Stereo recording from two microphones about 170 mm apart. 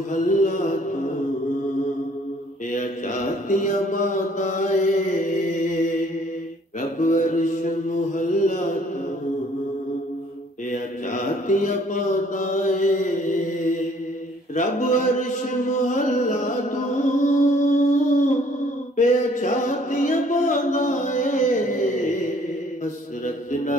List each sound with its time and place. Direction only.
0.1 s music: 50° left (ahead or behind)
3.4 s mantra: 50° left (ahead or behind)
11.4 s mantra: 50° left (ahead or behind)
14.5 s a sound: 45° left (ahead or behind)
15.7 s music: 45° left (ahead or behind)
23.2 s music: 50° left (ahead or behind)